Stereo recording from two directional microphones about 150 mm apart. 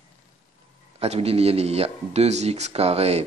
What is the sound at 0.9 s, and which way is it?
A man's voice, 45° right (ahead or behind).